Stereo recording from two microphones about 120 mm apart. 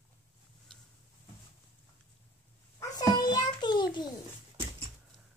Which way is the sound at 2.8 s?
35° left (ahead or behind).